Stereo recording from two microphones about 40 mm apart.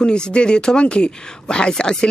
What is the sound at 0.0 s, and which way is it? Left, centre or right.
Speech, left.